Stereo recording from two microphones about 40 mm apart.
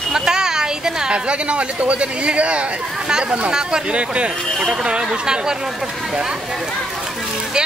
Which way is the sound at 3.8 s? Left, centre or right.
Right.